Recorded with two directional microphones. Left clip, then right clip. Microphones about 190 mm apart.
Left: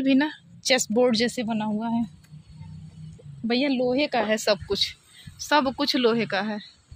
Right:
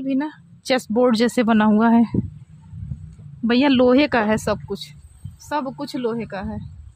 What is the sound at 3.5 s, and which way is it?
Speech, 45° right (ahead or behind).